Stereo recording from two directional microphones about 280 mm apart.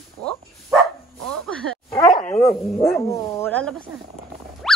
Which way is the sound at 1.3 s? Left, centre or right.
Centre.